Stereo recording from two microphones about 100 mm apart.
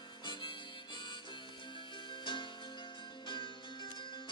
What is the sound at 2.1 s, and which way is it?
Music, 55° left (ahead or behind).